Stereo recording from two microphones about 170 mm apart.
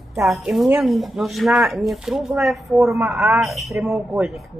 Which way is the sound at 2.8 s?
15° right (ahead or behind).